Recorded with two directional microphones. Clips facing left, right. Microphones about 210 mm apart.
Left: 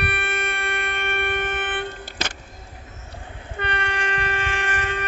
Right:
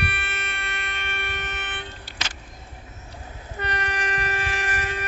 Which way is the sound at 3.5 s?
25° left (ahead or behind).